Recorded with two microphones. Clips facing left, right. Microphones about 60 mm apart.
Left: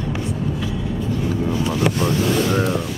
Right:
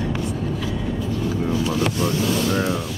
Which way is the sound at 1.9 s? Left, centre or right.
Left.